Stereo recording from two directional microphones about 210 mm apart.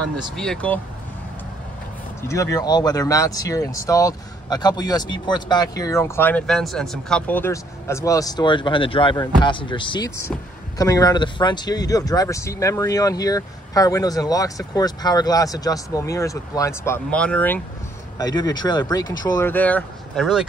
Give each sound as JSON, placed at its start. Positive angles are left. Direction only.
{"t": 0.2, "sound": "speech", "side_deg": 5}
{"t": 2.2, "sound": "speech", "side_deg": 15}
{"t": 18.1, "sound": "speech", "side_deg": 20}